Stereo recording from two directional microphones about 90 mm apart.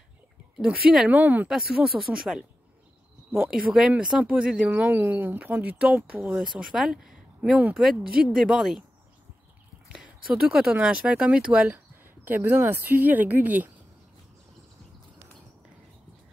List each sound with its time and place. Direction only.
0.6 s speech: 10° right (ahead or behind)
1.5 s speech: 5° right (ahead or behind)
3.4 s speech: 5° right (ahead or behind)
9.9 s speech: 10° right (ahead or behind)
12.0 s speech: 25° right (ahead or behind)